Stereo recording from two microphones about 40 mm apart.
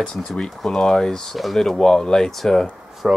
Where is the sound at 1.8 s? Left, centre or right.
Centre.